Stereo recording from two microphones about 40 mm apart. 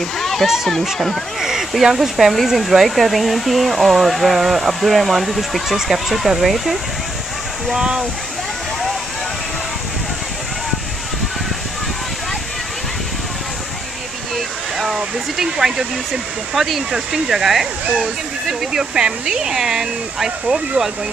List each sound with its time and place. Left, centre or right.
0.2 s a sound: centre
0.9 s speech: centre
1.4 s speech: centre
7.7 s speech: centre
15.3 s speech: centre